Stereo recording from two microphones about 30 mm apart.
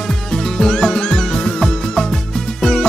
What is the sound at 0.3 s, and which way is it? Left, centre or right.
Music, centre.